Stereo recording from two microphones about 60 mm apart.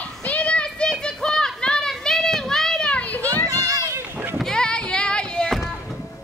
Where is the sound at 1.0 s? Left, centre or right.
Centre.